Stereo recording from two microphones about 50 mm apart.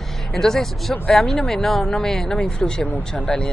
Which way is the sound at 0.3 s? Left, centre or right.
Centre.